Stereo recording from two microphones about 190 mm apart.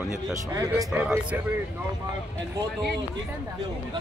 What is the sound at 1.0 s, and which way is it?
Speech, 5° right (ahead or behind).